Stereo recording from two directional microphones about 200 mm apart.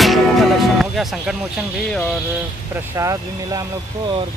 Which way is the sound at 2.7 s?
15° right (ahead or behind).